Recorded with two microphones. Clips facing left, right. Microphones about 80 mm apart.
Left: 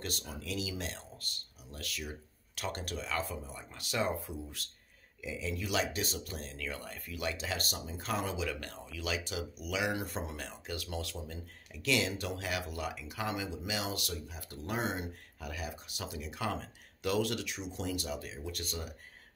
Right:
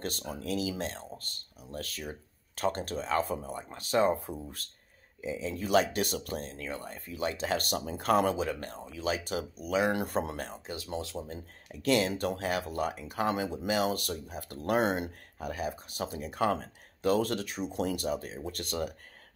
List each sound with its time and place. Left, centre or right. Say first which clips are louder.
0.0 s speech: right 5 dB; right
9.9 s speech: right 7 dB; right
15.3 s speech: right 8 dB; right